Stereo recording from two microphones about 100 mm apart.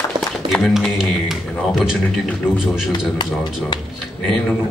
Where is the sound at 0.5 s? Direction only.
Centre (ahead or behind).